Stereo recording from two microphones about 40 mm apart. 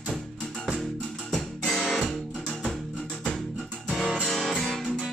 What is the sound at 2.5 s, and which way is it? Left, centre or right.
Music, centre.